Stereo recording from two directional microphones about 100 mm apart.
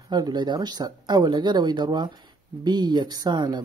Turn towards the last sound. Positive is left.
turn(degrees=-45)  # may be behind; listen again after turning